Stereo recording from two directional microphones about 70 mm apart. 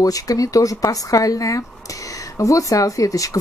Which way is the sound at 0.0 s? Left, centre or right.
Left.